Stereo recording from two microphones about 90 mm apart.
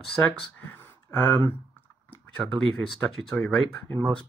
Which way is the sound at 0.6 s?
25° left (ahead or behind).